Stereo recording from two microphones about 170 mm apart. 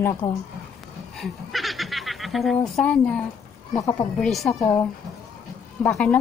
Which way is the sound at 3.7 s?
20° left (ahead or behind).